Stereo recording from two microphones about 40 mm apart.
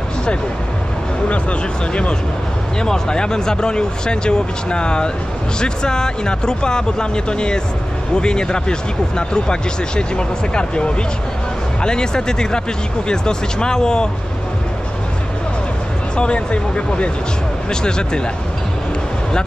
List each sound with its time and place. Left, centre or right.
1.3 s speech: left
2.8 s speech: centre
16.2 s speech: left